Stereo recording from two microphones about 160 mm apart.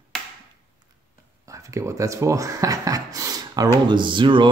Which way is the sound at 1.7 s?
20° right (ahead or behind).